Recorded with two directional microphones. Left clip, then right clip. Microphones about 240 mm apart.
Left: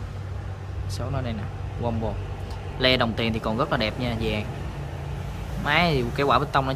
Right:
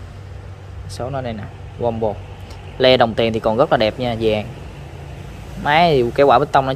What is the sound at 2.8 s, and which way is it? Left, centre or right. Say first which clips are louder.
Speech: right 9 dB; centre.